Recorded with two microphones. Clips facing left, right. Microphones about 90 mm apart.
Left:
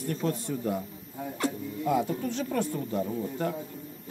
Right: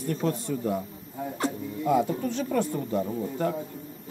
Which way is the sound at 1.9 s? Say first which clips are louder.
Right 3 dB; 15° right (ahead or behind).